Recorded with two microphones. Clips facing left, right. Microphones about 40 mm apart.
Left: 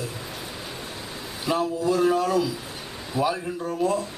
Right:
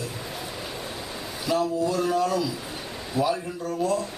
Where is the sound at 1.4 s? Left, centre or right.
Left.